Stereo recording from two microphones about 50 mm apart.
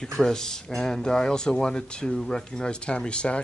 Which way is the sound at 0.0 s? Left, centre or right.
Centre.